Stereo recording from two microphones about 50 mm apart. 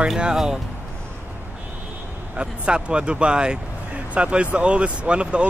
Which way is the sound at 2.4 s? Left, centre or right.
Centre.